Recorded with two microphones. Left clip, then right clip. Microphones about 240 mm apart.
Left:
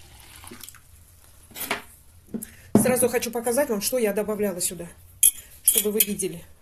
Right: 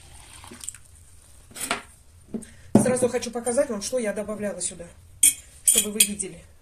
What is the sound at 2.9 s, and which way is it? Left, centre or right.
Speech, left.